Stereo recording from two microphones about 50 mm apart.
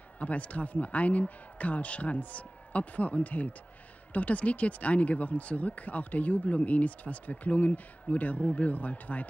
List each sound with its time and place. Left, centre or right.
0.2 s a man's voice: left